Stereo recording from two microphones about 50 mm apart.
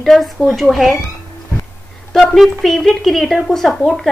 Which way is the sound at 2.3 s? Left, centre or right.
Centre.